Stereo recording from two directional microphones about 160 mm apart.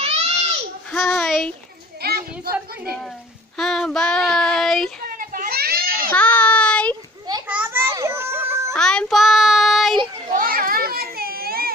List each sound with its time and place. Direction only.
0.0 s baby cry: 40° right (ahead or behind)
1.2 s a sound: centre (ahead or behind)
2.0 s a sound: 70° right (ahead or behind)
3.5 s child singing: centre (ahead or behind)
5.0 s children playing: 60° right (ahead or behind)
6.1 s child singing: 10° left (ahead or behind)
7.4 s a sound: 10° right (ahead or behind)
8.7 s child singing: 5° left (ahead or behind)
10.3 s children playing: 65° right (ahead or behind)